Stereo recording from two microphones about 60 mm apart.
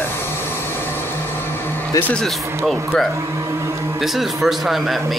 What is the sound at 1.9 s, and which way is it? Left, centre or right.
Speech, left.